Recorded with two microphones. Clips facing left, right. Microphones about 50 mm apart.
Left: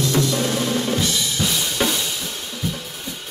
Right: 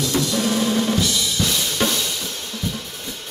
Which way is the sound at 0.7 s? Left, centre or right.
Centre.